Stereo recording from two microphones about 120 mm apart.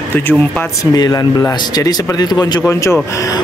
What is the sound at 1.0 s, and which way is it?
Speech, 30° left (ahead or behind).